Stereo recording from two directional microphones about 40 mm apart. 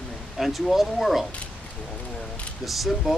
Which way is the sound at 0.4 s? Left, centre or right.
Centre.